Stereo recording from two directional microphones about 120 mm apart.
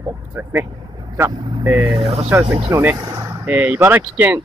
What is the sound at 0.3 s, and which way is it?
Speech, 20° right (ahead or behind).